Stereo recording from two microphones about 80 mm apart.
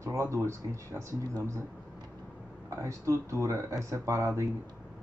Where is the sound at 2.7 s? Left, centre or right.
Right.